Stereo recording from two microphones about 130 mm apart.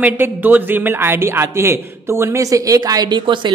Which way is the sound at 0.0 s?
15° right (ahead or behind).